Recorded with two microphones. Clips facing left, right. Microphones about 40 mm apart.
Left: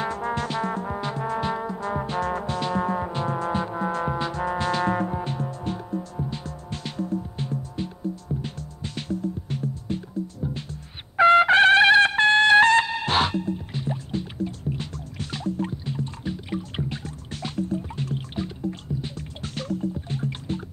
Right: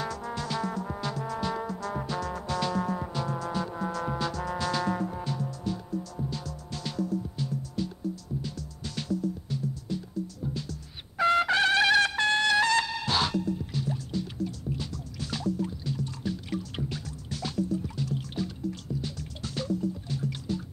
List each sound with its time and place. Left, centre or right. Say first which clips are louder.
0.0 s brass instrument: left 7 dB; left
1.6 s music: left 5 dB; left
10.5 s trumpet: left 2 dB; left
16.4 s music: left 3 dB; left
17.3 s music: left 2 dB; left
19.5 s music: left 2 dB; left